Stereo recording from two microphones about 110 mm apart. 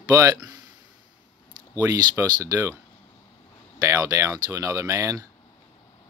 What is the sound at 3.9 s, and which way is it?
Speech, 30° right (ahead or behind).